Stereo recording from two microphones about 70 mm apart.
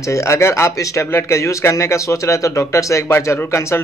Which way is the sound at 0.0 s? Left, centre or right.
Left.